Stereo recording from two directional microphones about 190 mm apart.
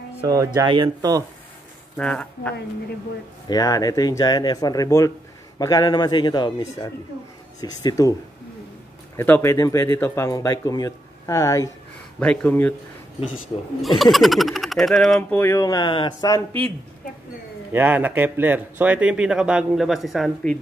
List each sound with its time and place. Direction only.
0.6 s speech: 25° right (ahead or behind)
2.0 s speech: 5° left (ahead or behind)
3.4 s speech: 20° left (ahead or behind)
12.2 s speech: 5° left (ahead or behind)
13.7 s speech: centre (ahead or behind)
15.3 s speech: 15° left (ahead or behind)
17.7 s speech: 10° right (ahead or behind)